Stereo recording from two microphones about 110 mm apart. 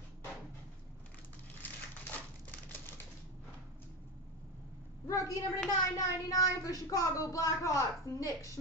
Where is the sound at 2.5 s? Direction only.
15° left (ahead or behind).